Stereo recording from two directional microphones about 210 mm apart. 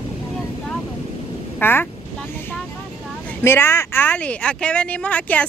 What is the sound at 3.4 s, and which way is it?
Speech, 10° left (ahead or behind).